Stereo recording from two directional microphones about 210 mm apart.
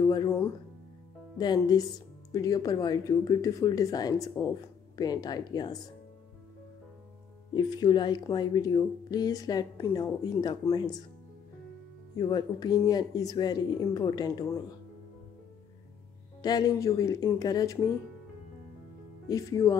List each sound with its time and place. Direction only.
0.0 s speech: 20° left (ahead or behind)
7.5 s speech: 20° left (ahead or behind)
12.2 s speech: 20° left (ahead or behind)
16.4 s speech: 20° left (ahead or behind)
19.2 s speech: 15° left (ahead or behind)